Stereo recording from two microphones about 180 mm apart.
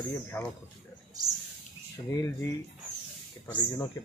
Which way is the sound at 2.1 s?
15° left (ahead or behind).